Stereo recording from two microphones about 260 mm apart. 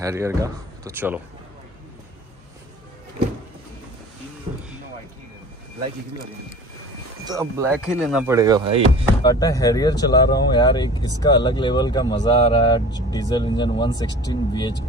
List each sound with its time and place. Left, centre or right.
0.0 s speech: centre
7.2 s speech: centre
9.2 s speech: centre